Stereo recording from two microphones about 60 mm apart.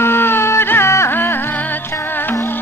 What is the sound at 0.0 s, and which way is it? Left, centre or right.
Music, left.